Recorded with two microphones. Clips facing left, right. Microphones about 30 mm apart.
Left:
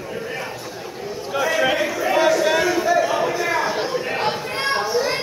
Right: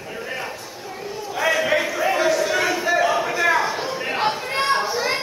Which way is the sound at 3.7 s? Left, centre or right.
Centre.